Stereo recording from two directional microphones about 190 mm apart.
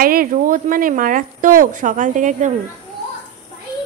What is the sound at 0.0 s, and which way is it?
A woman's voice, 50° right (ahead or behind).